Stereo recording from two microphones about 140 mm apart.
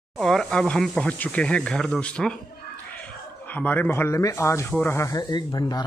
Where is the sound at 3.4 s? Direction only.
10° left (ahead or behind); by 5.9 s 30° left (ahead or behind).